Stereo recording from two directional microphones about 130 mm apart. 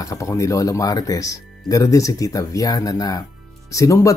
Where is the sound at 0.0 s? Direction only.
25° left (ahead or behind).